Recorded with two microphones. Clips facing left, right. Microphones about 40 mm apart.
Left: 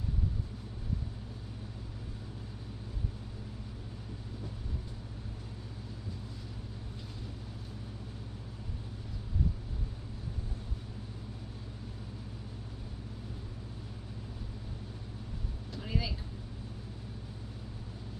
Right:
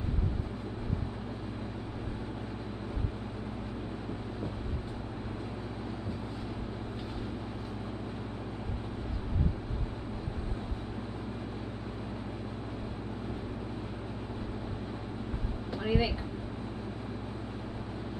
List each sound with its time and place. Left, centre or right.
15.7 s vehicle: right